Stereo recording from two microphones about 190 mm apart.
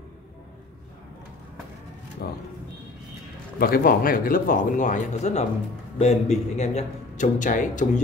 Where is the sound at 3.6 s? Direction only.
50° left (ahead or behind).